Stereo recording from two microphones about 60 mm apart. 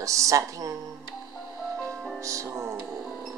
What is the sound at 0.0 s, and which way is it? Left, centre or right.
Speech, right.